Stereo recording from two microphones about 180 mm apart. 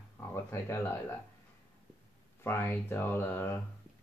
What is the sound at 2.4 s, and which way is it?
Speech, 10° left (ahead or behind).